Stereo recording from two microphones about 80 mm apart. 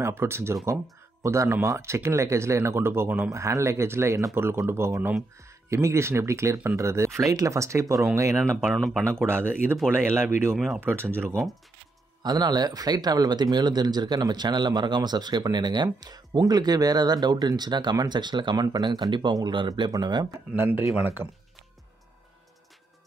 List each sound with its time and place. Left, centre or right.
0.0 s speech: right
3.3 s speech: right
8.7 s speech: centre
9.3 s speech: right
10.5 s speech: centre
10.8 s speech: right
12.2 s speech: right
20.5 s speech: right